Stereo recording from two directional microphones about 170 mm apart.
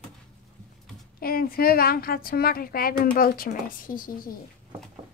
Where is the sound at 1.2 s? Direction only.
60° left (ahead or behind).